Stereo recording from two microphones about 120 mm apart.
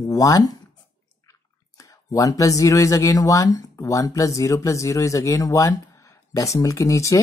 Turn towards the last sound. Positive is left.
turn(degrees=25)  # may be behind; listen again after turning